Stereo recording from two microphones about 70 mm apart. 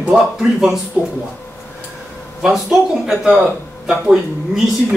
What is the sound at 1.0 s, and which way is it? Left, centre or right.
Speech, centre.